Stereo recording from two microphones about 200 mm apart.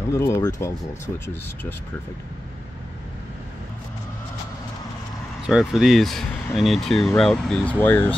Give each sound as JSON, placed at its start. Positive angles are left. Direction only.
{"t": 0.1, "sound": "speech", "side_deg": 15}
{"t": 5.5, "sound": "speech", "side_deg": 0}